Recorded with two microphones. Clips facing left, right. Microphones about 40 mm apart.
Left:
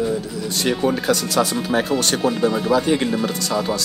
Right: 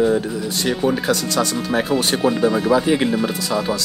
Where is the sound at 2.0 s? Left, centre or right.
Centre.